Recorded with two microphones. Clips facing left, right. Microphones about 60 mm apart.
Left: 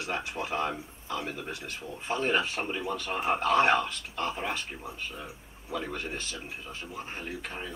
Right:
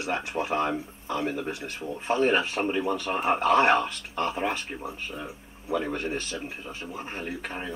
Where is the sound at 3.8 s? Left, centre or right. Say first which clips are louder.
Right 3 dB; centre.